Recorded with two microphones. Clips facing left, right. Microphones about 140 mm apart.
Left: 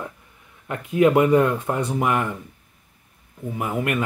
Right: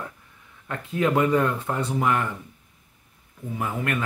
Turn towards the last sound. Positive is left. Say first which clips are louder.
# left 3 dB
turn(degrees=15)  # may be behind; listen again after turning